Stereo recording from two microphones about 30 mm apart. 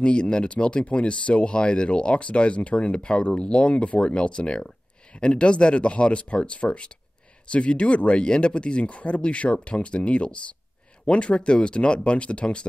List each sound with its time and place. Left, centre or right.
0.0 s speech: left